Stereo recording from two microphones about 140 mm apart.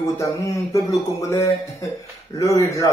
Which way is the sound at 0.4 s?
20° left (ahead or behind).